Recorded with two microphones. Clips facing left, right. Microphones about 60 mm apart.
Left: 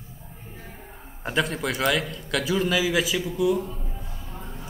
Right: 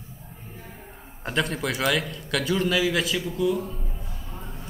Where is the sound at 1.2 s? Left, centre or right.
Centre.